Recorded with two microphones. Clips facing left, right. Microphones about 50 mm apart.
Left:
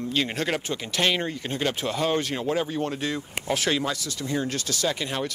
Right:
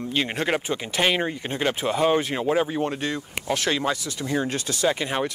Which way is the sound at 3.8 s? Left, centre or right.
Centre.